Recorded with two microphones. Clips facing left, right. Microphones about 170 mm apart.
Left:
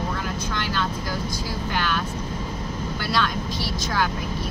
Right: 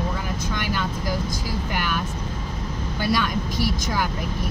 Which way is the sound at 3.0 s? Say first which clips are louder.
Right 3 dB; 15° right (ahead or behind).